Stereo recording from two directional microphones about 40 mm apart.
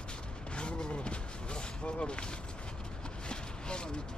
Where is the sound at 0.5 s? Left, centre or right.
Left.